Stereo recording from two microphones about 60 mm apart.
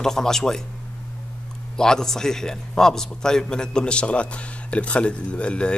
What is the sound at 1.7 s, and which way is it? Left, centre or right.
A man's voice, centre.